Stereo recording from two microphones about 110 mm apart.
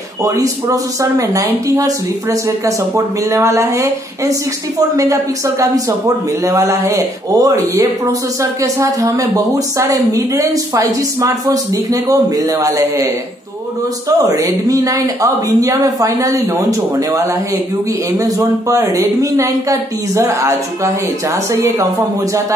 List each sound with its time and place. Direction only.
0.2 s speech: 30° right (ahead or behind)
3.3 s speech: 30° right (ahead or behind)
4.9 s speech: 30° right (ahead or behind)
18.1 s speech: 30° right (ahead or behind)